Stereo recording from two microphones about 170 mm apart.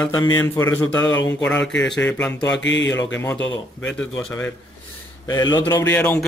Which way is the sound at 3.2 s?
10° left (ahead or behind).